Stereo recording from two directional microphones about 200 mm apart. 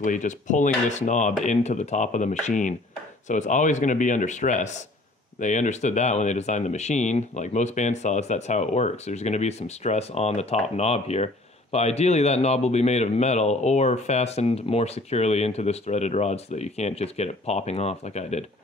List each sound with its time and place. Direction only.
0.0 s speech: 40° left (ahead or behind)